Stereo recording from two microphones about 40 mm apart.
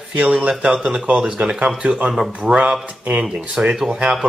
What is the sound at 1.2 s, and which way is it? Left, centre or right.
Speech, right.